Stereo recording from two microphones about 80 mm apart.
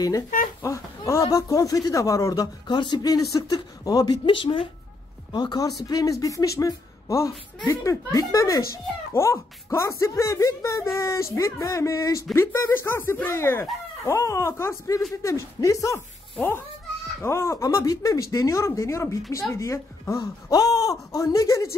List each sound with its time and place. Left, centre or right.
0.0 s speech: left
2.7 s speech: left
3.3 s speech: left
4.3 s speech: left
5.3 s speech: left
6.1 s speech: left
9.1 s speech: left
12.7 s speech: left
17.2 s speech: left
20.2 s speech: left